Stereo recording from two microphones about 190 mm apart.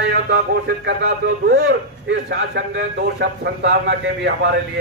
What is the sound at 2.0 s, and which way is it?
A man's voice, 70° right (ahead or behind).